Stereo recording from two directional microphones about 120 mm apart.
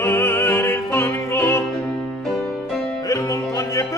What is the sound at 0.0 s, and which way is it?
Music, 20° left (ahead or behind).